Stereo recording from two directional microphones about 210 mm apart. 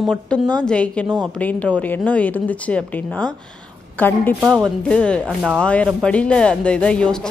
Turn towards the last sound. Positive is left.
turn(degrees=5)  # may be behind; listen again after turning